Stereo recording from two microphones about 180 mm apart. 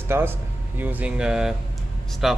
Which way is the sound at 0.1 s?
10° right (ahead or behind).